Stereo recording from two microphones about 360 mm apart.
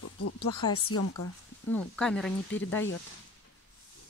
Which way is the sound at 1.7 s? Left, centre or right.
Centre.